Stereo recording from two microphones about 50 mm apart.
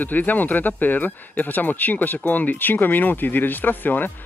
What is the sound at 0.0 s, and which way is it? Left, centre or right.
Speech, left.